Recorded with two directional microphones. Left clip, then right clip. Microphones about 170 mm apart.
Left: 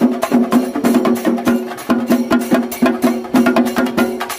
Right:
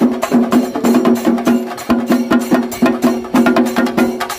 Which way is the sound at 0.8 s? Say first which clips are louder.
Right 3 dB; 20° left (ahead or behind).